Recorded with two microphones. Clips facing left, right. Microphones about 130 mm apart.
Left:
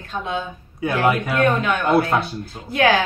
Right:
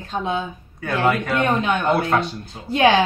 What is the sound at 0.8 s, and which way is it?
A man's voice, 10° left (ahead or behind).